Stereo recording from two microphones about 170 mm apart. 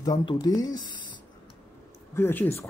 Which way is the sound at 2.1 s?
10° left (ahead or behind).